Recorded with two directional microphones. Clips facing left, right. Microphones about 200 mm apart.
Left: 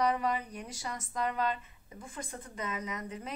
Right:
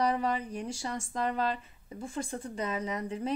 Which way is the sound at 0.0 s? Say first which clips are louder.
Right 1 dB; 30° right (ahead or behind).